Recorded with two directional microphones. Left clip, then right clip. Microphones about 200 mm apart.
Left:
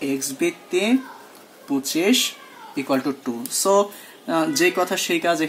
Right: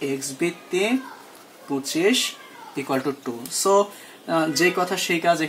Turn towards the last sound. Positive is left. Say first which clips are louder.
# even
turn(degrees=15)  # may be behind; listen again after turning